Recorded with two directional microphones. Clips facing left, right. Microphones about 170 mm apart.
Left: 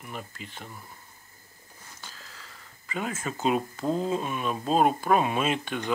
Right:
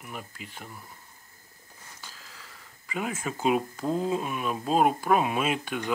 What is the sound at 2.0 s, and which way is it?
Speech, 5° right (ahead or behind).